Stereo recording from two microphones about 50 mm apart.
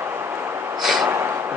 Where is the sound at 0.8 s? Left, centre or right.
Centre.